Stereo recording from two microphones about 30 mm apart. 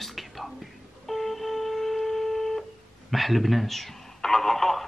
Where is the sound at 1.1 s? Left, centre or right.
Centre.